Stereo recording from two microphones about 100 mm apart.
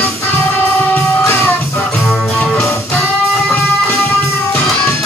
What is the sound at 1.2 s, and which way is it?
Music, 25° left (ahead or behind).